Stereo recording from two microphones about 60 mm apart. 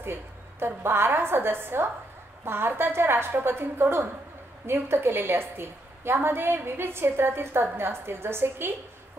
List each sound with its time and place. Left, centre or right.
0.0 s a woman's voice: right